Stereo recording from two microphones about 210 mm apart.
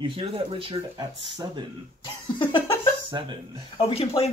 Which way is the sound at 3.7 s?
25° left (ahead or behind).